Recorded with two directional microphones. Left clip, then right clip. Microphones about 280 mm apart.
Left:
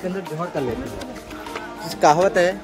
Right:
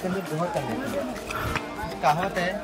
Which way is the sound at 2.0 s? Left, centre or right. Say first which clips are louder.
Left 9 dB; centre.